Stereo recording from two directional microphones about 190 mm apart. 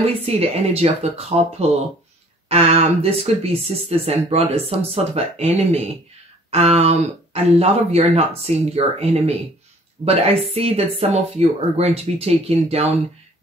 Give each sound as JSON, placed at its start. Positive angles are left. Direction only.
{"t": 0.0, "sound": "speech", "side_deg": -35}